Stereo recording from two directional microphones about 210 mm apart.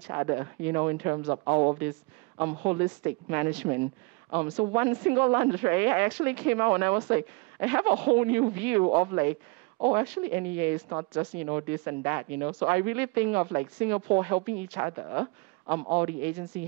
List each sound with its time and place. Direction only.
0.1 s speech: 15° right (ahead or behind)
2.3 s a woman's voice: 15° right (ahead or behind)